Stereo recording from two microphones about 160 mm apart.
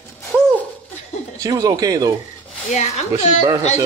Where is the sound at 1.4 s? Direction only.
20° right (ahead or behind).